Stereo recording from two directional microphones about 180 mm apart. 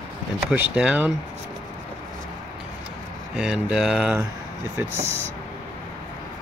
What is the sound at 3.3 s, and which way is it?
Speech, 5° right (ahead or behind).